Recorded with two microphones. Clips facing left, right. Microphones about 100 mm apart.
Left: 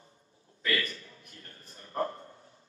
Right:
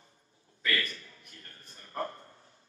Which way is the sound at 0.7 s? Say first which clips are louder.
Left 1 dB; 30° left (ahead or behind).